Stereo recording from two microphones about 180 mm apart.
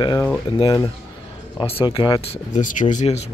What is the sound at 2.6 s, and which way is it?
Speech, 45° left (ahead or behind).